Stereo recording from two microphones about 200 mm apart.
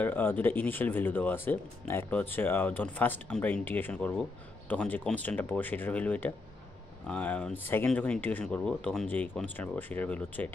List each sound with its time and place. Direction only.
0.0 s speech: 10° left (ahead or behind)